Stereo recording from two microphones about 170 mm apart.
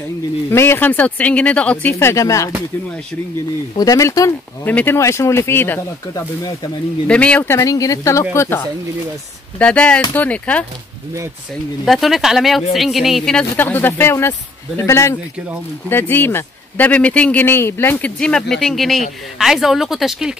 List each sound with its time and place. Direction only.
0.5 s speech: 10° left (ahead or behind)
3.7 s speech: 20° left (ahead or behind)
11.8 s speech: centre (ahead or behind)